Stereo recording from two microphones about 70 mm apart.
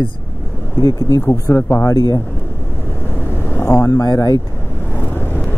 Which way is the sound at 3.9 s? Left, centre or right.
Left.